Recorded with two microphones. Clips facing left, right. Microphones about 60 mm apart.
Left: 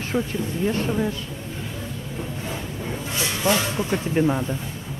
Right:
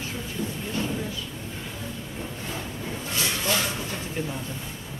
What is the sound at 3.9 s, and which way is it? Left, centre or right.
Speech, left.